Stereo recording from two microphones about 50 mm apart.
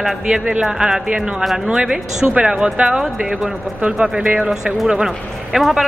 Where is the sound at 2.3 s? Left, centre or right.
Right.